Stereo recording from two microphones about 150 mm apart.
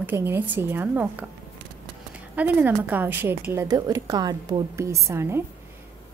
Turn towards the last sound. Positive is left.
turn(degrees=-15)  # may be behind; listen again after turning